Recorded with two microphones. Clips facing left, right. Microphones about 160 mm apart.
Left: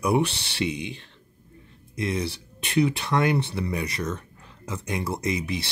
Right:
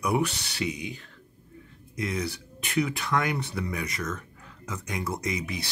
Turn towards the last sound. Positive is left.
turn(degrees=25)  # may be behind; listen again after turning